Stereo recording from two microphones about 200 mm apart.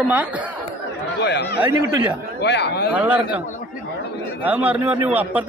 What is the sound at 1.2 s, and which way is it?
A man's voice, 60° left (ahead or behind).